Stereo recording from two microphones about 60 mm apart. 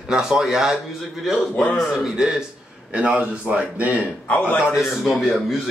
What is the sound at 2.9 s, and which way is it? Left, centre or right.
Speech, right.